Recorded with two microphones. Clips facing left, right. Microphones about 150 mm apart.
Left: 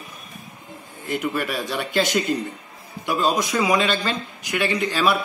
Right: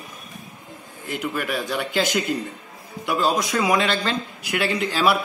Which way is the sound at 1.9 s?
Centre (ahead or behind).